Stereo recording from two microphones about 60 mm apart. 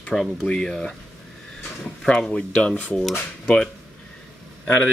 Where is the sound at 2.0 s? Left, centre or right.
Centre.